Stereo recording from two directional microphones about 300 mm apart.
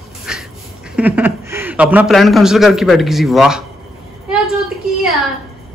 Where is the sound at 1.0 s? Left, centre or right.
Centre.